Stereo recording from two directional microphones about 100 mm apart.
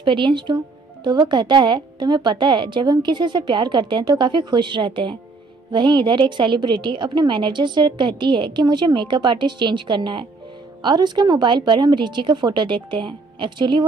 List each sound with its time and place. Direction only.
0.0 s a woman's voice: 55° right (ahead or behind)